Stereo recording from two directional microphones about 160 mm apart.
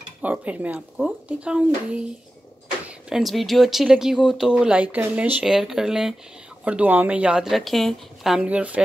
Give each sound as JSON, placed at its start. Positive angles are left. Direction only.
{"t": 0.2, "sound": "a woman's voice", "side_deg": -10}